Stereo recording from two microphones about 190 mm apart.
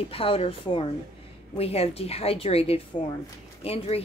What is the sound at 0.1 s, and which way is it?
A woman's voice, 30° left (ahead or behind).